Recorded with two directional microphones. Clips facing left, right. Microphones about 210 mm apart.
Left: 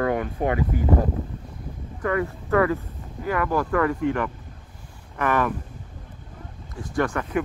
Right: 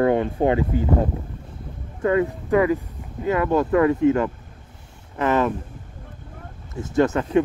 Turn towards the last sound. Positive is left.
turn(degrees=-25)  # may be behind; listen again after turning